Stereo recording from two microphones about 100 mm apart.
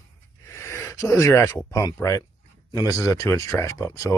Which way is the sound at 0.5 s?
30° left (ahead or behind).